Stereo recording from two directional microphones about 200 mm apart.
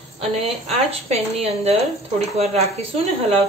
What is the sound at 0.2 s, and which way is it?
A woman's voice, 30° right (ahead or behind).